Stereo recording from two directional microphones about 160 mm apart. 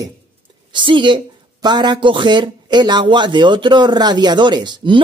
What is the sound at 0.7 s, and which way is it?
Speech, 30° right (ahead or behind).